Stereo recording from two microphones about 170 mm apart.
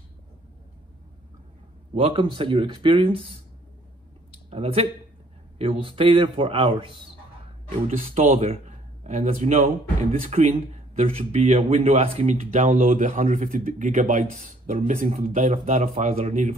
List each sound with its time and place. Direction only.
2.0 s speech: 30° right (ahead or behind)
4.5 s speech: 35° right (ahead or behind)